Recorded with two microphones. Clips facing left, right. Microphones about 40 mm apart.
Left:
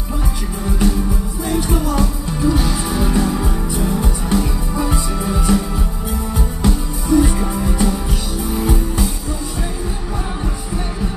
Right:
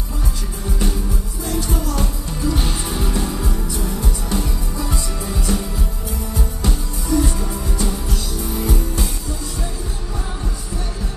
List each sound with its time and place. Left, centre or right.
1.4 s music: centre